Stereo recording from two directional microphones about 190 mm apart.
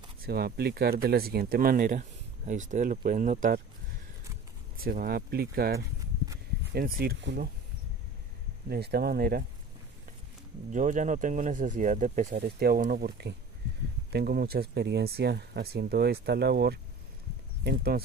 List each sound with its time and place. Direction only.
0.2 s speech: 55° right (ahead or behind)
4.7 s speech: 50° right (ahead or behind)
8.6 s speech: 55° right (ahead or behind)
10.7 s speech: 40° right (ahead or behind)
12.4 s speech: 55° right (ahead or behind)